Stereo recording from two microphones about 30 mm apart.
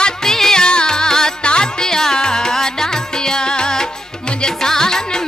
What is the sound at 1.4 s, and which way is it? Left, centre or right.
Music, left.